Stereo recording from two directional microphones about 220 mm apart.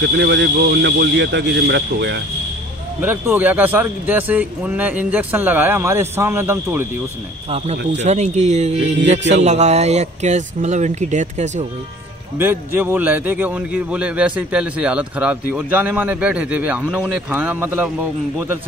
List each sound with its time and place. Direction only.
0.0 s speech: 50° right (ahead or behind)
3.0 s a man's voice: 10° right (ahead or behind)
7.4 s speech: 25° right (ahead or behind)
7.7 s speech: 50° right (ahead or behind)
8.0 s speech: 30° right (ahead or behind)
12.4 s a man's voice: 10° right (ahead or behind)